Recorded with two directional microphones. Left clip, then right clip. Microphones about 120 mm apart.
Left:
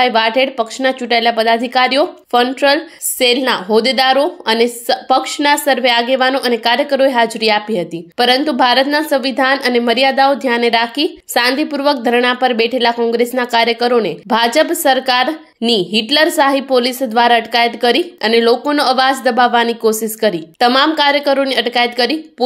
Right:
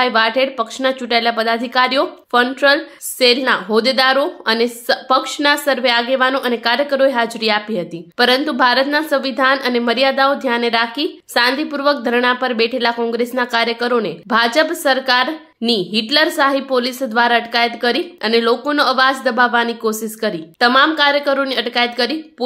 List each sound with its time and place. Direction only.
0.0 s speech: 20° left (ahead or behind)